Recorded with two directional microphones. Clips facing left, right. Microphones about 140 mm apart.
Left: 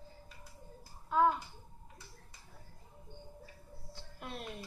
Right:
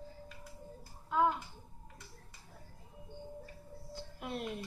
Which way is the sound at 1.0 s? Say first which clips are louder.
Left 2 dB; 5° right (ahead or behind).